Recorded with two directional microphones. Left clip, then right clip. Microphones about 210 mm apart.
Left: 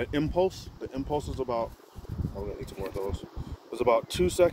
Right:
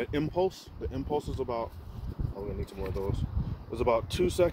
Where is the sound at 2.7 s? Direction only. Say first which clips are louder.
Left 2 dB; 10° left (ahead or behind).